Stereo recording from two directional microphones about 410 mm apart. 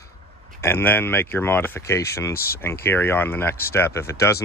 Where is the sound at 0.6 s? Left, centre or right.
Centre.